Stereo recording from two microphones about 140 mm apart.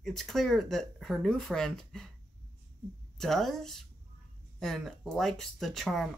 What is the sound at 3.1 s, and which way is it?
Speech, centre (ahead or behind).